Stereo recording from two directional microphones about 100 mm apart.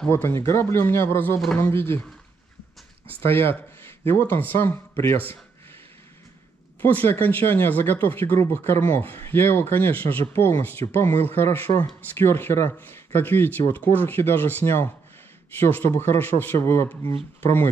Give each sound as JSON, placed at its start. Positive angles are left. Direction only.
{"t": 0.1, "sound": "speech", "side_deg": 20}
{"t": 3.3, "sound": "speech", "side_deg": 20}
{"t": 6.8, "sound": "speech", "side_deg": 20}